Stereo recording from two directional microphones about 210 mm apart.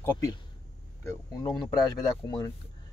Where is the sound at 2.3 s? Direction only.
20° left (ahead or behind).